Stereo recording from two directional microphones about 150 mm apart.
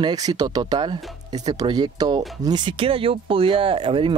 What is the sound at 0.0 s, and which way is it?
Speech, 25° right (ahead or behind).